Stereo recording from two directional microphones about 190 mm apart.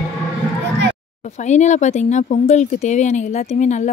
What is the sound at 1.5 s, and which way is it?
Speech, 40° left (ahead or behind).